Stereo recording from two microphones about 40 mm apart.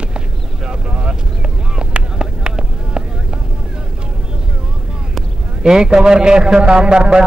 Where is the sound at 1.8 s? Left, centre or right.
Right.